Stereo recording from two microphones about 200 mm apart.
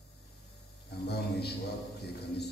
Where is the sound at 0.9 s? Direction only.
55° left (ahead or behind).